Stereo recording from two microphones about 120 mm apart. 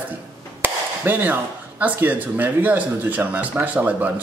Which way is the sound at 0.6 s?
15° right (ahead or behind).